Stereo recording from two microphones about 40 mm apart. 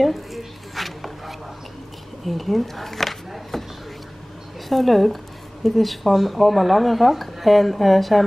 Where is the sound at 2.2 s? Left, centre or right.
Centre.